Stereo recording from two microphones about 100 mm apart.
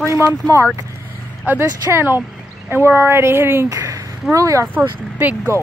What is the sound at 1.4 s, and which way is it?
Speech, 25° right (ahead or behind).